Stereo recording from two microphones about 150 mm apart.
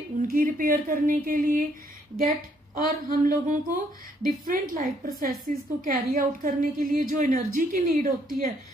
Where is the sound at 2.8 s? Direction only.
65° right (ahead or behind).